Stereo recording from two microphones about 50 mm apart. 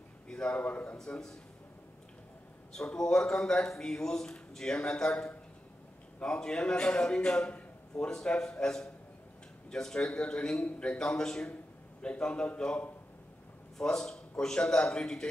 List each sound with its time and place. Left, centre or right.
0.3 s a sound: centre
0.6 s a man's voice: left
0.9 s speech: centre
3.0 s a man's voice: centre
11.0 s a man's voice: centre
13.7 s speech: centre